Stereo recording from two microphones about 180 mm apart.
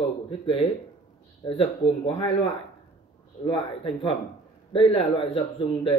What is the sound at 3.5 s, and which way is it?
Speech, 30° left (ahead or behind).